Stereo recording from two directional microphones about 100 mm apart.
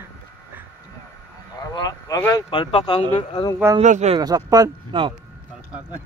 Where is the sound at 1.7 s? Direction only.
40° left (ahead or behind).